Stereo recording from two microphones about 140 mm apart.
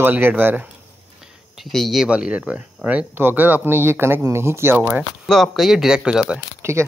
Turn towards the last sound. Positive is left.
turn(degrees=-20)  # may be behind; listen again after turning